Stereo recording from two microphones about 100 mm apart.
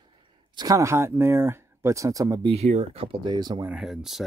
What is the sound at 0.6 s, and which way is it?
Speech, 35° right (ahead or behind).